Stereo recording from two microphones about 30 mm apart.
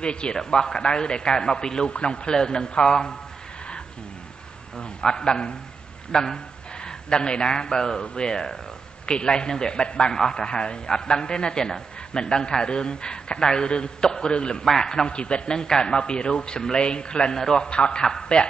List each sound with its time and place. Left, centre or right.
0.0 s a man's voice: left
0.4 s a man's voice: left
1.9 s a man's voice: left
2.3 s a man's voice: left
4.7 s a man's voice: left
10.1 s a man's voice: left
14.6 s a man's voice: centre
15.1 s a man's voice: left; by 17.6 s centre
17.6 s a man's voice: left